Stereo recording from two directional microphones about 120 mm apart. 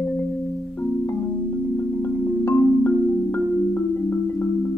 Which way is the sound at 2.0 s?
15° left (ahead or behind).